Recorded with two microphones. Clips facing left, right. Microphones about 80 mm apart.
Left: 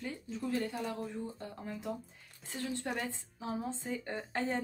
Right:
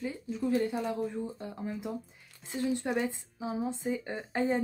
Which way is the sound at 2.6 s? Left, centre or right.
Centre.